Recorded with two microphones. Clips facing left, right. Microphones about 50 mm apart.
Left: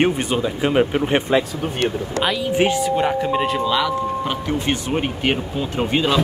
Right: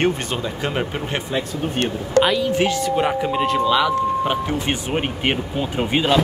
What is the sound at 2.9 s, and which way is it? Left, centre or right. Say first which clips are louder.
Speech: left 1 dB; centre.